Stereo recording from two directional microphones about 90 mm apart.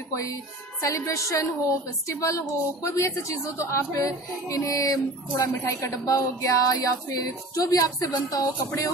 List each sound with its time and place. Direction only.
0.1 s a woman's voice: 35° left (ahead or behind)